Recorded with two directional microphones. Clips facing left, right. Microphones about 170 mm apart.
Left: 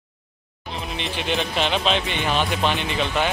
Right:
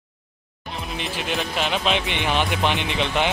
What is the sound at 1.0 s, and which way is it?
Speech, 5° right (ahead or behind).